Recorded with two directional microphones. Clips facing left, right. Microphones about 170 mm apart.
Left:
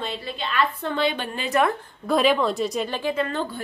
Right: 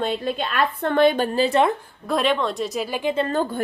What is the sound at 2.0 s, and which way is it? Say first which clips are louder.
Speech: left 2 dB; centre (ahead or behind).